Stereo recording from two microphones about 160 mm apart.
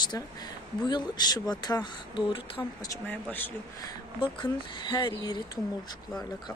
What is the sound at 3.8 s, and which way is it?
Speech, 30° left (ahead or behind).